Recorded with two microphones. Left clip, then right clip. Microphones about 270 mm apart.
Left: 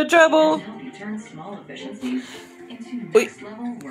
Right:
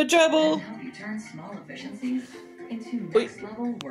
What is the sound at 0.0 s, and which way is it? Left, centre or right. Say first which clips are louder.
Speech: left 5 dB; centre.